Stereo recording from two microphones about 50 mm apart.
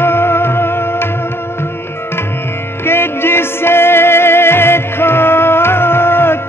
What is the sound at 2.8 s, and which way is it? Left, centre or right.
Music, left.